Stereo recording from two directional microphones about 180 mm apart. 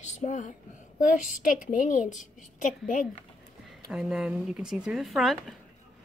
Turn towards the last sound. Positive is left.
turn(degrees=0)  # may be behind; listen again after turning